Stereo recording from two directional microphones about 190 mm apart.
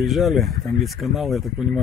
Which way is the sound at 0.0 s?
Centre (ahead or behind).